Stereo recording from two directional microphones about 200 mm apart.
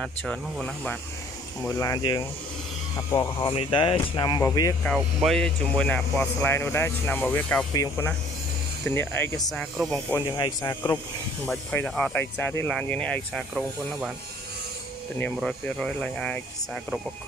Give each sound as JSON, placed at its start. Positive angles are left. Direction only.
{"t": 0.0, "sound": "speech", "side_deg": 5}
{"t": 1.8, "sound": "speech", "side_deg": 20}
{"t": 4.9, "sound": "speech", "side_deg": 0}
{"t": 15.1, "sound": "speech", "side_deg": 5}